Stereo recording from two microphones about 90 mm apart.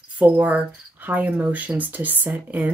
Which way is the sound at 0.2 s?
15° right (ahead or behind).